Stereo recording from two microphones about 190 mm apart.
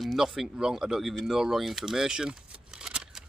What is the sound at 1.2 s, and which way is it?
Keys jangling, centre (ahead or behind).